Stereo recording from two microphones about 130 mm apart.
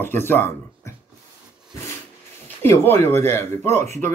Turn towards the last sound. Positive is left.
turn(degrees=20)  # may be behind; listen again after turning